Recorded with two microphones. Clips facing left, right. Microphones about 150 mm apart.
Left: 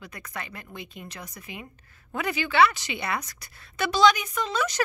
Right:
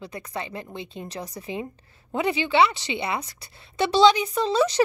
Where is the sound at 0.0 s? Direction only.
30° right (ahead or behind).